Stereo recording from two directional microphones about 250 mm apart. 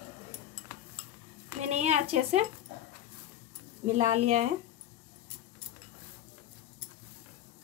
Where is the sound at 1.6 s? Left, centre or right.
Right.